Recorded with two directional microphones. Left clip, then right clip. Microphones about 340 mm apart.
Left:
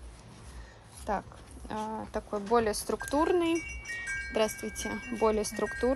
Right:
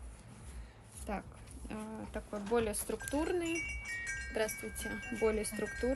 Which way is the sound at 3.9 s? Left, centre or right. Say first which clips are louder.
Left 10 dB; left.